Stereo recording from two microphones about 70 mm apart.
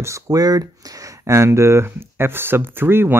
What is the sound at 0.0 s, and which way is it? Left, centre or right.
Speech, right.